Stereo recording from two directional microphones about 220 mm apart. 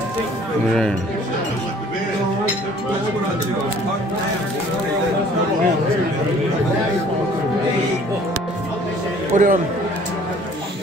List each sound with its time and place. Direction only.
9.3 s a man's voice: 35° right (ahead or behind)